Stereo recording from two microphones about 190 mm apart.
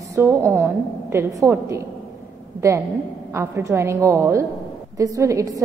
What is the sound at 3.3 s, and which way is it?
A woman's voice, 15° right (ahead or behind).